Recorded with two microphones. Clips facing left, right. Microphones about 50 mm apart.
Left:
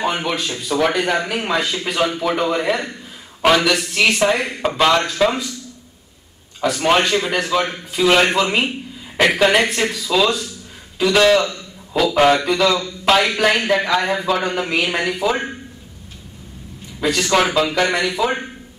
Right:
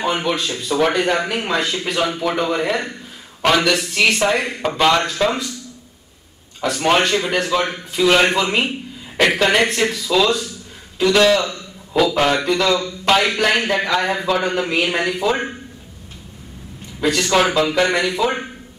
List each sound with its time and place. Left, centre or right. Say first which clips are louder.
0.0 s a man's voice: right 1 dB; centre
6.6 s a man's voice: even; centre
11.4 s a sound: left 1 dB; centre
12.1 s a man's voice: left 3 dB; centre
17.0 s a man's voice: even; centre